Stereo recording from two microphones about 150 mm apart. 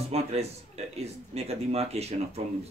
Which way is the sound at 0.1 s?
45° right (ahead or behind).